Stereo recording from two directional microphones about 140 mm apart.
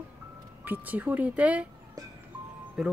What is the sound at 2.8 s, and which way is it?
Speech, 5° right (ahead or behind).